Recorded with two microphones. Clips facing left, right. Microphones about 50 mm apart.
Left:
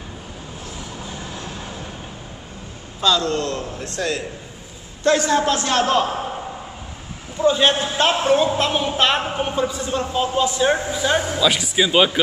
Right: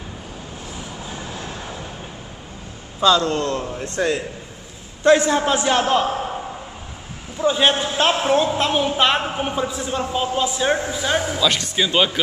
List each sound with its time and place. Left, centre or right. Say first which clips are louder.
3.0 s a man's voice: right 2 dB; right
7.3 s a man's voice: left 1 dB; centre